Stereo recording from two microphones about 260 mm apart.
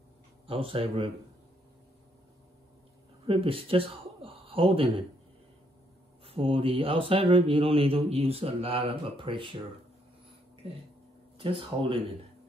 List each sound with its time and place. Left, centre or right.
0.5 s speech: right
3.3 s speech: right
6.2 s speech: right
11.3 s speech: centre